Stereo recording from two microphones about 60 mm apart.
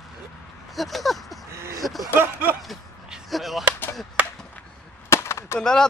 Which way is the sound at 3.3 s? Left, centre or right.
Centre.